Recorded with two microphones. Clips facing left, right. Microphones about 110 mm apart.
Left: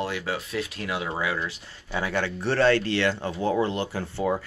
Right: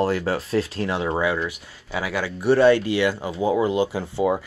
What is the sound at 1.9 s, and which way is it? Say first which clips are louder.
Speech: right 1 dB; 5° right (ahead or behind).